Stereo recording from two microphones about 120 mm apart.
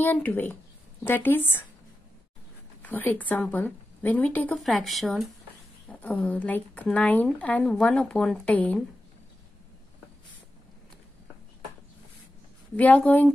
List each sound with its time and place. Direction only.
0.0 s speech: 15° left (ahead or behind)
2.8 s speech: 15° left (ahead or behind)
4.6 s speech: centre (ahead or behind)
5.9 s speech: 15° left (ahead or behind)
12.7 s speech: 15° left (ahead or behind)